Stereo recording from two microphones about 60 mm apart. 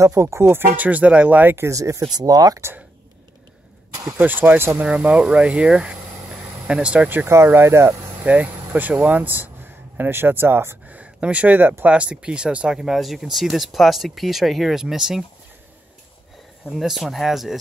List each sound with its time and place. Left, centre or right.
0.0 s speech: right
0.4 s speech: right
1.7 s speech: right
4.2 s speech: right
4.8 s speech: right
7.2 s speech: right
8.2 s speech: right
10.9 s a sound: right
11.8 s speech: centre
16.7 s speech: centre